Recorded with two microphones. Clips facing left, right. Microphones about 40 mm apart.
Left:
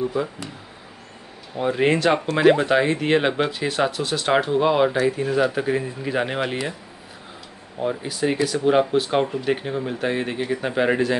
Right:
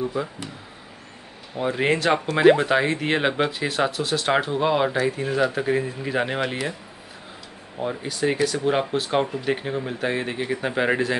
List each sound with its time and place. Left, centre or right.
0.0 s speech: centre
1.6 s speech: centre
7.8 s speech: centre